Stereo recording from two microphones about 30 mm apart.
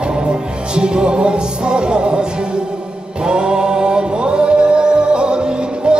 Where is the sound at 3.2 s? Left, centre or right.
Right.